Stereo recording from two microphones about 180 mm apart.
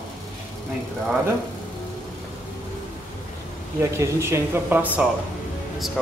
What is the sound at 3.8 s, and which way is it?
Speech, 15° right (ahead or behind).